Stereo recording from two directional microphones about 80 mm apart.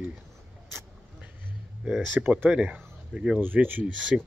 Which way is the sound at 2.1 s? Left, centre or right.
Right.